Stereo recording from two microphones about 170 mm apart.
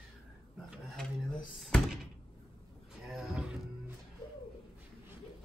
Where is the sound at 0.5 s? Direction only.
Centre (ahead or behind).